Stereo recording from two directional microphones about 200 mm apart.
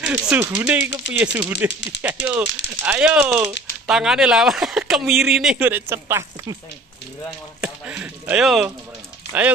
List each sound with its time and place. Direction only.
0.0 s speech: 10° right (ahead or behind)
1.7 s speech: 60° left (ahead or behind)
2.0 s speech: 10° right (ahead or behind)
7.6 s speech: 5° right (ahead or behind)